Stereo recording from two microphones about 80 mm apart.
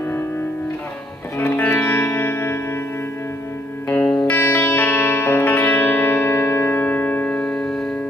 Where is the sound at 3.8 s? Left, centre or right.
Centre.